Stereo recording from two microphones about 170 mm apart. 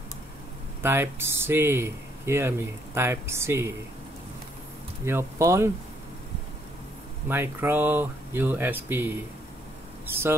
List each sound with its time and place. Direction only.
0.8 s speech: 15° right (ahead or behind)
5.0 s speech: 15° right (ahead or behind)
7.2 s speech: 15° right (ahead or behind)